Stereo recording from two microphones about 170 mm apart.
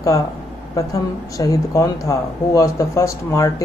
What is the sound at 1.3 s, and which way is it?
Speech, 20° left (ahead or behind).